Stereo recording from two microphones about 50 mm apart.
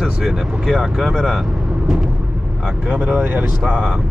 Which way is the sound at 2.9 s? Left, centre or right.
Right.